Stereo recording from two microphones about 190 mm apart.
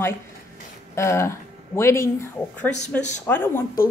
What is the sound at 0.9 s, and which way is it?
Speech, 15° left (ahead or behind).